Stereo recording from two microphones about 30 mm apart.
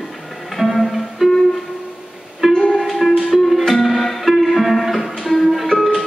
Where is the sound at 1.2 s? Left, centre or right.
Centre.